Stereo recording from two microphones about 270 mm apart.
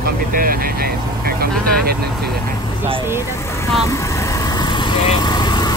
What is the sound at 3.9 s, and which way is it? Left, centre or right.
Vehicle, centre.